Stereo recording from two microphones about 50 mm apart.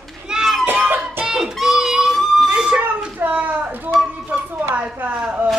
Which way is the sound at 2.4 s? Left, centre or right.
Centre.